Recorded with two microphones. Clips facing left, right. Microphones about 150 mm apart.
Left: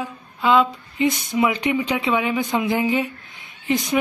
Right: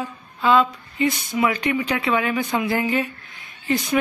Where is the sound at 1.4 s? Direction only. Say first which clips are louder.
Left 1 dB; 20° left (ahead or behind).